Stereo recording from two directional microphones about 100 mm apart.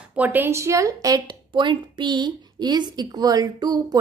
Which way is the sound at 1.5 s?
50° right (ahead or behind).